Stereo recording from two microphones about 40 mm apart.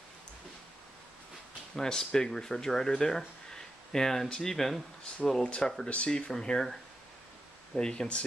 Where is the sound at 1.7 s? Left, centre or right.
Centre.